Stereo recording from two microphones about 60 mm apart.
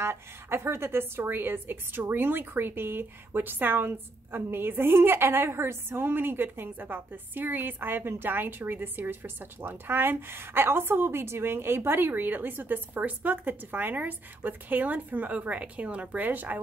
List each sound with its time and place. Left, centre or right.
0.0 s a woman's voice: right